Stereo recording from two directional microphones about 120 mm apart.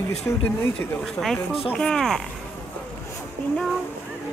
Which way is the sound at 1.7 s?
5° left (ahead or behind).